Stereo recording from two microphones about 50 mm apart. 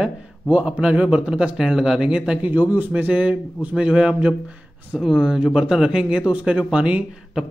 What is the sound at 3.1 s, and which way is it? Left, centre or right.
A man's voice, right.